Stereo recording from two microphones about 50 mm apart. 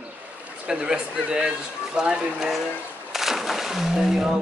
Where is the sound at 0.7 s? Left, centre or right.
Centre.